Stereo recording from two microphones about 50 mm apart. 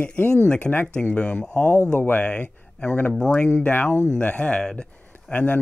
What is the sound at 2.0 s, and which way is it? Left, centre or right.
Speech, left.